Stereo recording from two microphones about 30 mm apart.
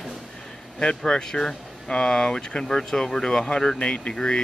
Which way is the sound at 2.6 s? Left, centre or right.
Centre.